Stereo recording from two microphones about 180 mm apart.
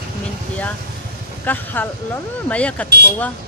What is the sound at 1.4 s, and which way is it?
Speech, 10° left (ahead or behind).